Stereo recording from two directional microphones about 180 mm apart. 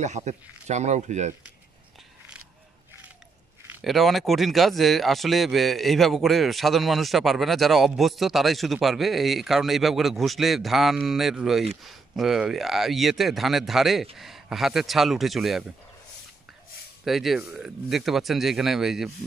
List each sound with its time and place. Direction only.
0.0 s speech: 40° right (ahead or behind)
3.8 s speech: centre (ahead or behind)
17.0 s speech: centre (ahead or behind)